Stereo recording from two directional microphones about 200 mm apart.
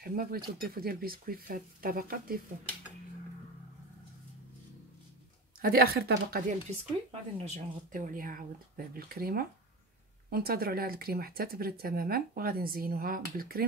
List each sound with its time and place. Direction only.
0.0 s speech: 45° right (ahead or behind)
5.6 s speech: 50° right (ahead or behind)
7.1 s speech: 35° right (ahead or behind)